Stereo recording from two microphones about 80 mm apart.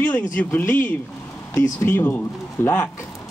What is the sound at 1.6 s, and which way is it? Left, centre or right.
Speech, left.